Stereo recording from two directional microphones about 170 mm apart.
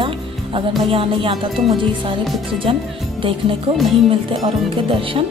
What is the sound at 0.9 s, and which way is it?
Speech, 30° right (ahead or behind).